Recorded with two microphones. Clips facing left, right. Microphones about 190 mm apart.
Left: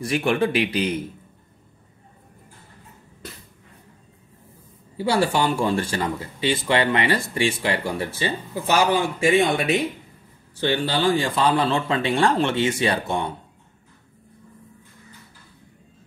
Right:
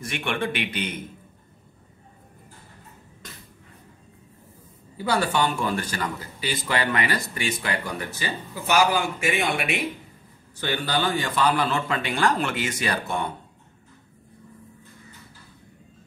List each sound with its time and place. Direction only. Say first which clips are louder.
0.0 s speech: left 7 dB; 35° left (ahead or behind)
4.9 s speech: left 3 dB; 30° left (ahead or behind)